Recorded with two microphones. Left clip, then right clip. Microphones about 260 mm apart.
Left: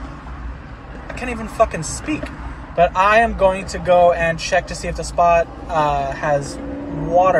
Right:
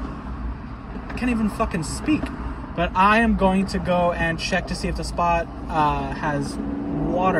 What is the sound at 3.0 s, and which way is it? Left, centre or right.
Speech, centre.